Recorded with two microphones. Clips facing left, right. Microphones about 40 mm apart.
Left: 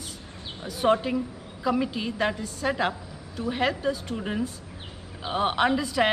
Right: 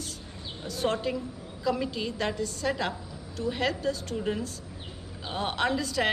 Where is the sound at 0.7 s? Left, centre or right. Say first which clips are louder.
Left 5 dB; centre.